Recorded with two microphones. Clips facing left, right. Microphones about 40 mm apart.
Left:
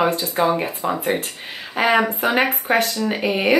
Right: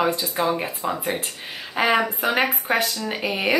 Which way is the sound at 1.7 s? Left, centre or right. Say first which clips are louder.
Left 3 dB; centre.